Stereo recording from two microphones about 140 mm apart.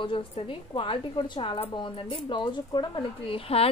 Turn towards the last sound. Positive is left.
turn(degrees=45)  # may be behind; listen again after turning